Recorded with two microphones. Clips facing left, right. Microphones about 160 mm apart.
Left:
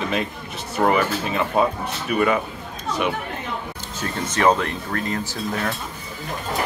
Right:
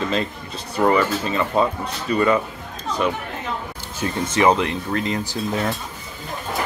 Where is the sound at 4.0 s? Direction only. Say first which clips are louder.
Right 4 dB; 10° right (ahead or behind).